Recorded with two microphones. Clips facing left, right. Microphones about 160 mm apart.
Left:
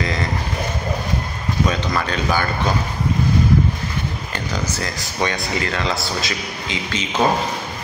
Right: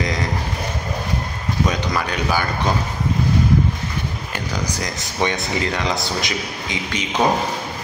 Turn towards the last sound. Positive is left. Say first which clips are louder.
# even
turn(degrees=-15)  # may be behind; listen again after turning